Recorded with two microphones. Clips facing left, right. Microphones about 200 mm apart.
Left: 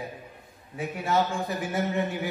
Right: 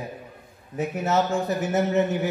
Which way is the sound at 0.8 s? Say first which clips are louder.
Right 3 dB; 40° right (ahead or behind).